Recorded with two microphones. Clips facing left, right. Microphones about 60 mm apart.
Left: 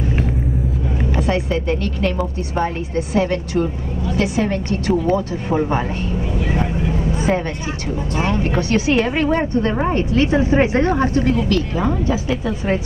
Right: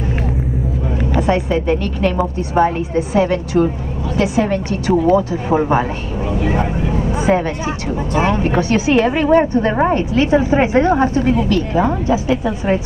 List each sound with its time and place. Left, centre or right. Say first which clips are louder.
1.2 s speech: right 4 dB; centre
6.5 s vehicle: right 2 dB; centre
8.1 s a woman's voice: right 4 dB; centre